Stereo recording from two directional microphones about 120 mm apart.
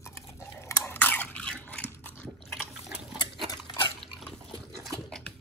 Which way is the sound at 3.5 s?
40° left (ahead or behind).